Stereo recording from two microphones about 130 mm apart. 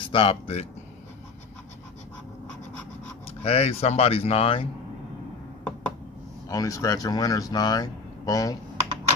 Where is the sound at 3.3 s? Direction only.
55° left (ahead or behind).